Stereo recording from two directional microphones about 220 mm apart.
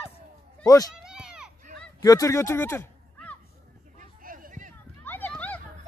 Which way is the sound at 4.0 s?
40° right (ahead or behind).